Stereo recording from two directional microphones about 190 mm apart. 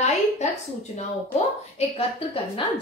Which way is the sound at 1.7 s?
30° left (ahead or behind).